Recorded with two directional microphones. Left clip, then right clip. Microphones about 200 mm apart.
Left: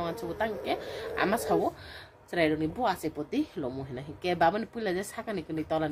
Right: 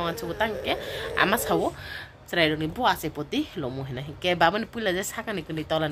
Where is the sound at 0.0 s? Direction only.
Centre (ahead or behind).